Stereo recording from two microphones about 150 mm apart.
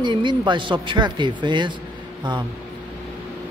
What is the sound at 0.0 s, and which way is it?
A man's voice, 30° right (ahead or behind).